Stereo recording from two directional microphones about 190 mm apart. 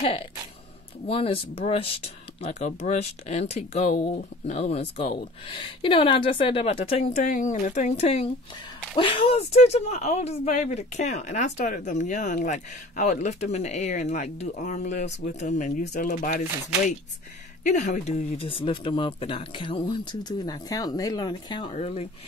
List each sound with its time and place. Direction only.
1.0 s speech: 30° left (ahead or behind)
18.6 s speech: 25° left (ahead or behind)